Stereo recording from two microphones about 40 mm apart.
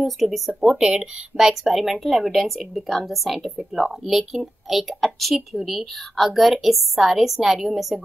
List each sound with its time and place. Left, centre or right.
0.0 s speech: centre
0.6 s speech: centre
1.5 s speech: centre